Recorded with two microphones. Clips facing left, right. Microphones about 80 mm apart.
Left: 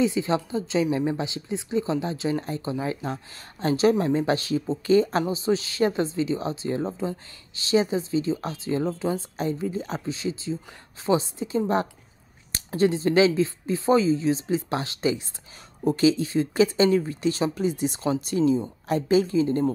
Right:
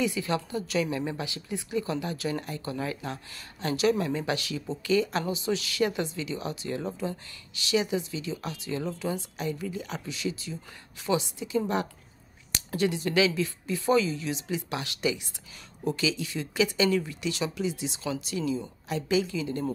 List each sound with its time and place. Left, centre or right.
0.0 s a woman's voice: left